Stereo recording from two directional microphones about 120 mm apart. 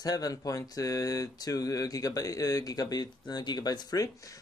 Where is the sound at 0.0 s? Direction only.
30° left (ahead or behind).